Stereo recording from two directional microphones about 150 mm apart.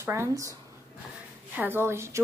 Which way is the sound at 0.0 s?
15° right (ahead or behind).